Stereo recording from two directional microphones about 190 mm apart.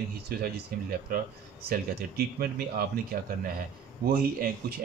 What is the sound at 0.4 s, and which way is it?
Speech, 50° right (ahead or behind).